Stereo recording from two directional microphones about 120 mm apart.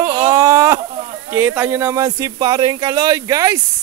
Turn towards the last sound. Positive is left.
turn(degrees=-30)  # may be behind; listen again after turning